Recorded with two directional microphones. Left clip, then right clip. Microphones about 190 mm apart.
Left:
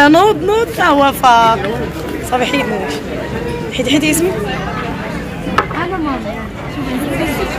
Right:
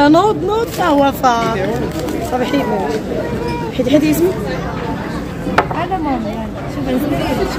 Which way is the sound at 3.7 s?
15° right (ahead or behind).